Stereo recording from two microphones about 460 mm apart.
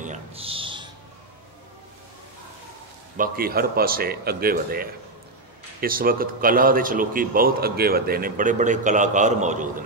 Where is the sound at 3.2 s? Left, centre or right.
Centre.